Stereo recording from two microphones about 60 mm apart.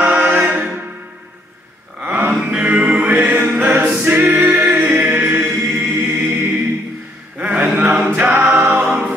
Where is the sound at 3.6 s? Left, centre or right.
Right.